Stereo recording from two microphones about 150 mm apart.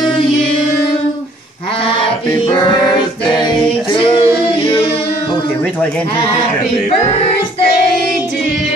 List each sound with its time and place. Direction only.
3.9 s female singing: 35° left (ahead or behind)